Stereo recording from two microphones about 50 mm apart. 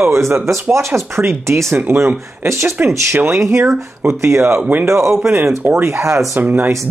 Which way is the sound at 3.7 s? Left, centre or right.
Right.